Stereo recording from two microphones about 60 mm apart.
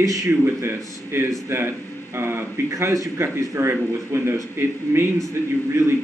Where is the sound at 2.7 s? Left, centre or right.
Right.